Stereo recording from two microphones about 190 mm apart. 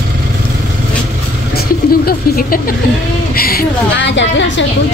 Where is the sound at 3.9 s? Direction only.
70° left (ahead or behind).